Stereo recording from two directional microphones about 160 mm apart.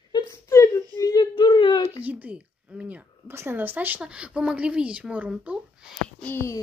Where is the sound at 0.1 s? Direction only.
20° left (ahead or behind).